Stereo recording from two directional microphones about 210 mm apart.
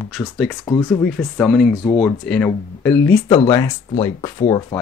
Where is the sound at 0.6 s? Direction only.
15° left (ahead or behind).